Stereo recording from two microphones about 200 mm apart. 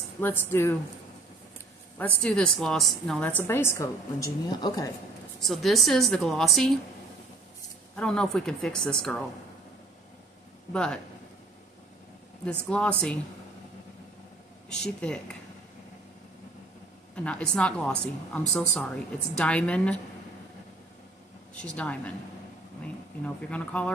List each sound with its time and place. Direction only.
0.2 s a woman's voice: 10° left (ahead or behind)
2.0 s a woman's voice: 5° left (ahead or behind)
5.4 s a woman's voice: centre (ahead or behind)
7.9 s a woman's voice: 5° left (ahead or behind)
10.7 s a woman's voice: 5° left (ahead or behind)
12.4 s a woman's voice: 5° left (ahead or behind)
14.7 s a woman's voice: 5° left (ahead or behind)
17.1 s a woman's voice: 5° left (ahead or behind)
21.6 s a woman's voice: 5° left (ahead or behind)
23.2 s a woman's voice: 5° left (ahead or behind)